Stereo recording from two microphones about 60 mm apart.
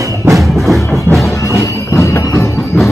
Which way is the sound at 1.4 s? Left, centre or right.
Left.